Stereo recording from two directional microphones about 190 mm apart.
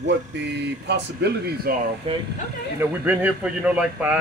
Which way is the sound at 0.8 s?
60° right (ahead or behind).